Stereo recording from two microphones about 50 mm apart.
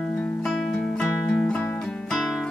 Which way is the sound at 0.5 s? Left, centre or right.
Centre.